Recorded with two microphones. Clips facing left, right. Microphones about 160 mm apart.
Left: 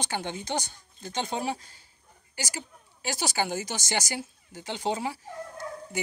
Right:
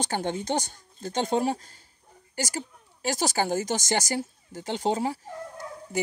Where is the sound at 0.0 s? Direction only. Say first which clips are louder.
Right 4 dB; 45° right (ahead or behind).